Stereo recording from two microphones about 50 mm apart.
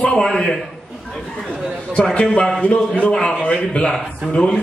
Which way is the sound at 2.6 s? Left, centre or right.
Left.